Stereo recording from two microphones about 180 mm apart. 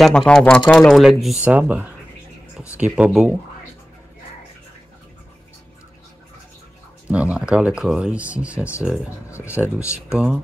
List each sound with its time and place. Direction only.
0.0 s speech: 5° left (ahead or behind)
7.1 s speech: 10° right (ahead or behind)